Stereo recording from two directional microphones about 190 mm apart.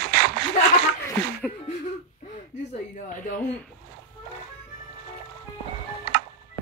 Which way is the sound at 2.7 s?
40° left (ahead or behind).